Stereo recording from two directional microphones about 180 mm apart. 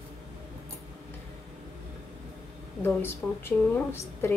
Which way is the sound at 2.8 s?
15° left (ahead or behind).